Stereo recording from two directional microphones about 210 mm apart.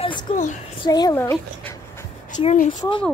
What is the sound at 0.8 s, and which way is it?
Speech, 20° left (ahead or behind).